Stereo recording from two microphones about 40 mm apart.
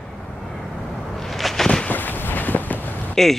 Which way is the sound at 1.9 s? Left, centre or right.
Left.